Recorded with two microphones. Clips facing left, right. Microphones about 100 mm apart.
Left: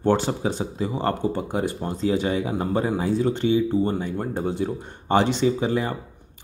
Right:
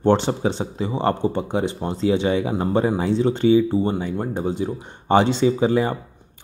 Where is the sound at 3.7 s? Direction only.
15° right (ahead or behind).